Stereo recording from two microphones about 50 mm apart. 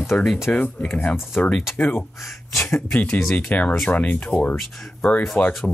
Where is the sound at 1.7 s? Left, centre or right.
Left.